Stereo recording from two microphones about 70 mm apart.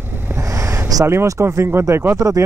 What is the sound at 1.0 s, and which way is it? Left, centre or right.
Speech, right.